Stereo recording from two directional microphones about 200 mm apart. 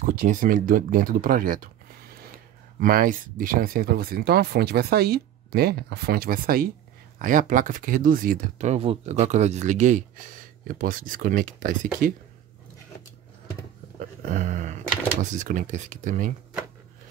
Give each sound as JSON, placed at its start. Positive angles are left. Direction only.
{"t": 0.0, "sound": "speech", "side_deg": -40}
{"t": 2.8, "sound": "speech", "side_deg": -45}
{"t": 13.9, "sound": "a sound", "side_deg": -40}
{"t": 15.2, "sound": "speech", "side_deg": -40}